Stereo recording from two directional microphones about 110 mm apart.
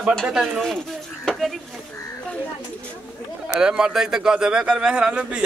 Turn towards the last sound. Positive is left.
turn(degrees=-10)  # may be behind; listen again after turning